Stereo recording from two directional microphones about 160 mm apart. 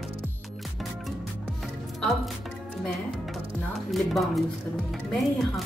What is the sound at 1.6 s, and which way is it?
Music, centre (ahead or behind).